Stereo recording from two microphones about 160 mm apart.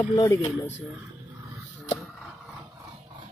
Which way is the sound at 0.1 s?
25° left (ahead or behind).